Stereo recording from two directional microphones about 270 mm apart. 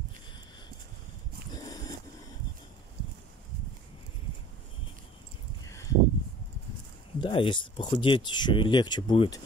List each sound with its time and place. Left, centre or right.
1.5 s dog: centre
5.7 s a sound: centre
7.2 s speech: centre